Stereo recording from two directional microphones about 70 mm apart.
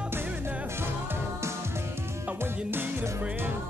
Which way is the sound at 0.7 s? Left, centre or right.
Right.